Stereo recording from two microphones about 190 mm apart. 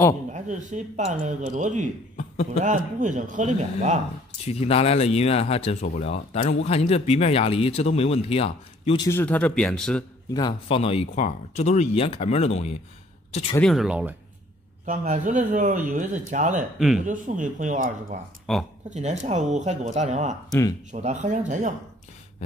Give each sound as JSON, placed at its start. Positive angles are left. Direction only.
{"t": 0.3, "sound": "speech", "side_deg": -40}
{"t": 2.1, "sound": "a sound", "side_deg": 35}
{"t": 2.6, "sound": "speech", "side_deg": -40}
{"t": 4.5, "sound": "speech", "side_deg": 30}
{"t": 9.0, "sound": "speech", "side_deg": 10}
{"t": 10.3, "sound": "speech", "side_deg": 25}
{"t": 13.6, "sound": "speech", "side_deg": 0}
{"t": 14.9, "sound": "speech", "side_deg": -40}
{"t": 16.7, "sound": "speech", "side_deg": 0}
{"t": 17.0, "sound": "speech", "side_deg": -40}
{"t": 18.5, "sound": "speech", "side_deg": 0}
{"t": 18.9, "sound": "speech", "side_deg": -35}